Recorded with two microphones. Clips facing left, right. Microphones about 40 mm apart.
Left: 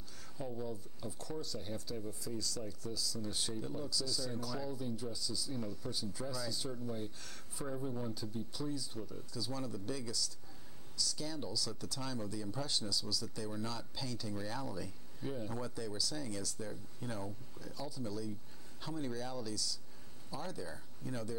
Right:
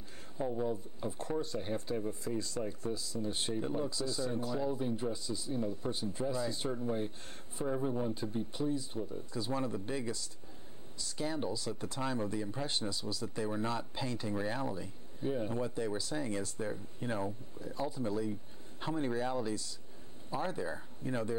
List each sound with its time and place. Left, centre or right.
0.4 s speech: right